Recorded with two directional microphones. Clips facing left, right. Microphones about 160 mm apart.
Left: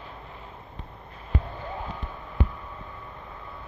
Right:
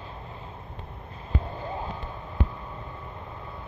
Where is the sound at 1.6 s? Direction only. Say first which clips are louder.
Right 2 dB; 30° right (ahead or behind).